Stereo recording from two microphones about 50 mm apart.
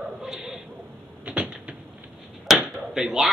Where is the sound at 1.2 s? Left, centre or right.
Right.